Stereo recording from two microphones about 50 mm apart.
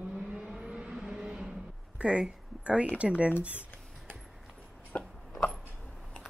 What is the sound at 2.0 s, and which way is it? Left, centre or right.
Speech, right.